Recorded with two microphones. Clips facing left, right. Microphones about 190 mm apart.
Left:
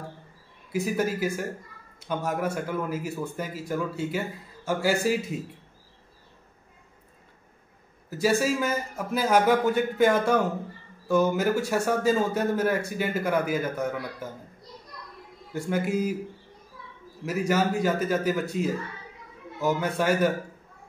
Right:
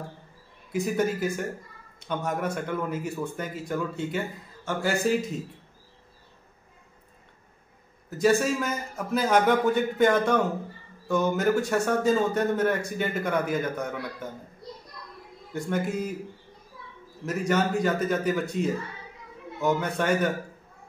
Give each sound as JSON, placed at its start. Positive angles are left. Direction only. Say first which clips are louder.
{"t": 0.7, "sound": "a man's voice", "louder": "right 1 dB", "side_deg": 5}
{"t": 8.1, "sound": "a man's voice", "louder": "right 1 dB", "side_deg": 5}
{"t": 15.5, "sound": "a man's voice", "louder": "left 2 dB", "side_deg": 5}
{"t": 17.2, "sound": "speech", "louder": "left 1 dB", "side_deg": 5}